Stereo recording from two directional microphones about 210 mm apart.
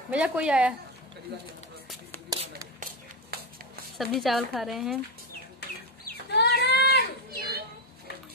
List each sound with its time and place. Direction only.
0.1 s speech: 5° right (ahead or behind)
2.3 s a sound: 15° right (ahead or behind)
4.0 s speech: centre (ahead or behind)
5.6 s livestock: 50° left (ahead or behind)
7.2 s children playing: 50° right (ahead or behind)